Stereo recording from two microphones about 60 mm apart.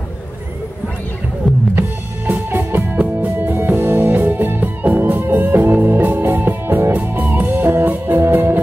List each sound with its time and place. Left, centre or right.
1.5 s music: centre
2.5 s music: right